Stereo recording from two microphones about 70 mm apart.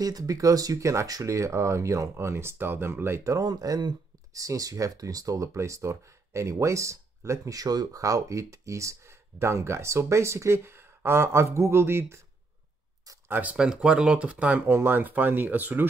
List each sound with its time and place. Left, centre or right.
0.0 s speech: right
3.3 s speech: right
13.3 s speech: right
14.7 s speech: right